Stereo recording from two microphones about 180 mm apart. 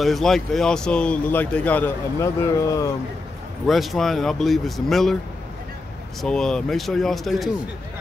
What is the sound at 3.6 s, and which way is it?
Speech, centre (ahead or behind).